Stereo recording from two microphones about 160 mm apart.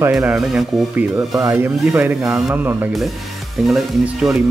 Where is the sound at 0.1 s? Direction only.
5° right (ahead or behind).